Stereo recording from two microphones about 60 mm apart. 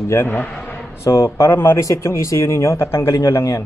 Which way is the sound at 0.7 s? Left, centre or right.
Left.